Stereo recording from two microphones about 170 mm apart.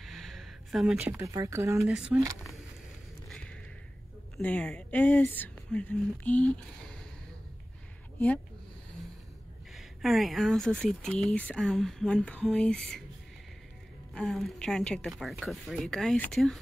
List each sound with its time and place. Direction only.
0.0 s a sound: centre (ahead or behind)
1.2 s speech: 20° right (ahead or behind)
1.9 s speech: 5° right (ahead or behind)
3.3 s a sound: 5° left (ahead or behind)
4.4 s speech: 5° left (ahead or behind)
9.8 s speech: centre (ahead or behind)
14.1 s speech: centre (ahead or behind)